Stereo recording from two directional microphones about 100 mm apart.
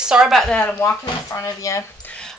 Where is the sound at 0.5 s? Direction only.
15° left (ahead or behind).